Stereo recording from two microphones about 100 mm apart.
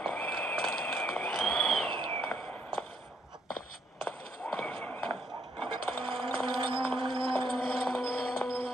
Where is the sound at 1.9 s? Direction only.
55° right (ahead or behind).